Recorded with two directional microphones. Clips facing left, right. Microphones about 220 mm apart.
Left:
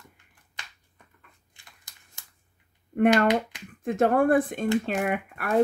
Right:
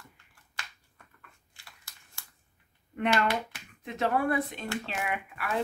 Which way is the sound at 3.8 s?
50° left (ahead or behind).